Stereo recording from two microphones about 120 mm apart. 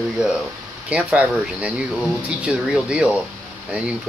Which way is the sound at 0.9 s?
10° right (ahead or behind).